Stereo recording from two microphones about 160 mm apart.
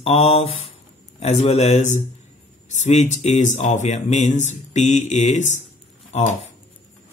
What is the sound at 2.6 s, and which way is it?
Speech, 45° left (ahead or behind).